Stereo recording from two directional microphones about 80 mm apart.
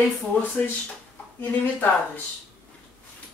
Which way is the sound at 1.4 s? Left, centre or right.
Left.